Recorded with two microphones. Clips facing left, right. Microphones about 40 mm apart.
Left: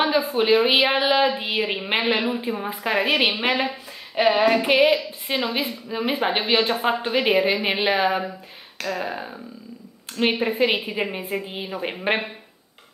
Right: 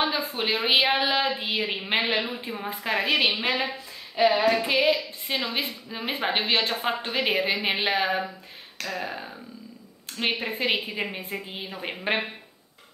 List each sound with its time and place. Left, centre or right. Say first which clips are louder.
0.4 s a woman's voice: left 5 dB; centre
4.1 s a sound: left 2 dB; left
4.5 s female singing: left 4 dB; left
4.9 s a woman's voice: left 6 dB; centre